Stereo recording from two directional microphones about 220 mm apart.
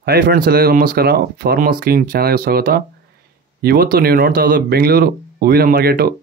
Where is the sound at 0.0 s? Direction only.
45° right (ahead or behind).